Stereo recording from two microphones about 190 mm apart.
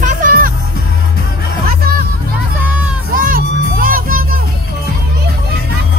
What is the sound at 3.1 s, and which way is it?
Music, 50° right (ahead or behind).